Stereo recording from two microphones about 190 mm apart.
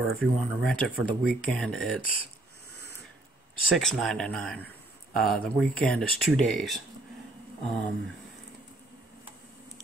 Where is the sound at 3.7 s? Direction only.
Centre (ahead or behind).